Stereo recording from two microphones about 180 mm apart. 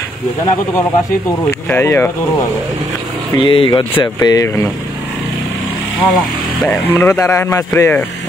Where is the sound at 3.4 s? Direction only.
30° left (ahead or behind).